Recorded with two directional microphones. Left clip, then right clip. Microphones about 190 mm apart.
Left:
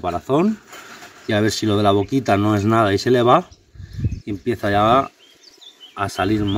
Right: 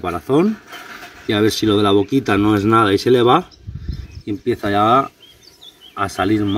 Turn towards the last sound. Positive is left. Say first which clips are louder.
# right 2 dB
turn(degrees=0)  # may be behind; listen again after turning